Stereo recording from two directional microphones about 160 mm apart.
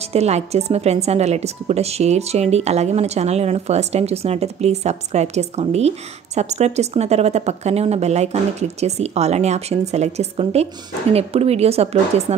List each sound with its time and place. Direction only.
0.1 s a woman's voice: 40° right (ahead or behind)